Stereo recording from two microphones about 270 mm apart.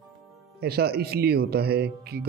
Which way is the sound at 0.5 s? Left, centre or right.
Right.